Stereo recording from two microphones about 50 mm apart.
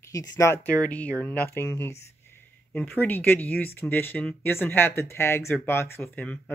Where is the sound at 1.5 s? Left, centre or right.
Left.